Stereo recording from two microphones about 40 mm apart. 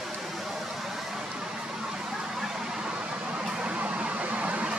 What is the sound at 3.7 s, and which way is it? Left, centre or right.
Vehicle, right.